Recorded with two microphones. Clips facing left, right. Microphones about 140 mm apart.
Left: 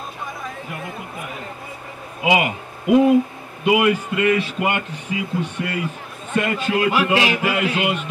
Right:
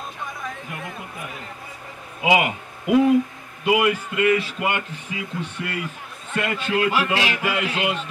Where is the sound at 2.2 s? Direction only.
25° left (ahead or behind).